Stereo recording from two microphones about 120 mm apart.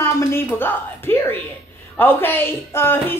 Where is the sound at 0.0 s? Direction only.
20° left (ahead or behind).